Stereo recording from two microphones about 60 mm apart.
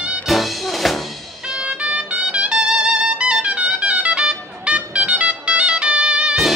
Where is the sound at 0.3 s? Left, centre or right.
Centre.